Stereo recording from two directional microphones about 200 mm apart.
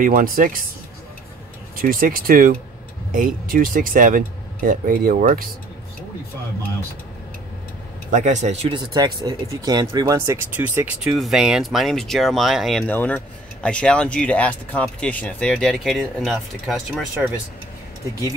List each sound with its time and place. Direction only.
0.0 s speech: 45° right (ahead or behind)
1.8 s speech: 45° right (ahead or behind)
8.1 s speech: 35° right (ahead or behind); by 17.0 s centre (ahead or behind)